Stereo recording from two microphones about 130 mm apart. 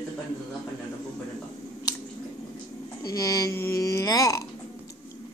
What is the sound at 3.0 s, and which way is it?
Speech, 25° left (ahead or behind).